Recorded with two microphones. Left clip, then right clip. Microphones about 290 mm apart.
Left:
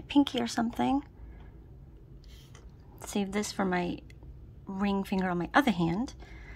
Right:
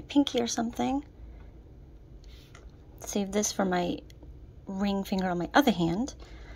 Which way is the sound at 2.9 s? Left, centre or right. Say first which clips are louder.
Right 3 dB; left.